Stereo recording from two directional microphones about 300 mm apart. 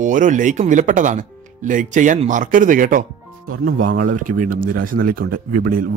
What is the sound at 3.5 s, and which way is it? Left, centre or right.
Speech, right.